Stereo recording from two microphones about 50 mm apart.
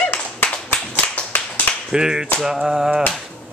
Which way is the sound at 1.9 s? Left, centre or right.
Centre.